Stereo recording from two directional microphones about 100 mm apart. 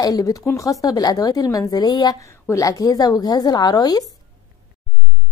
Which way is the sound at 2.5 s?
35° left (ahead or behind).